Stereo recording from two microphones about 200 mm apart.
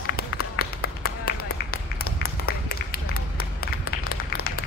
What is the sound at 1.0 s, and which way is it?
Run, 50° left (ahead or behind).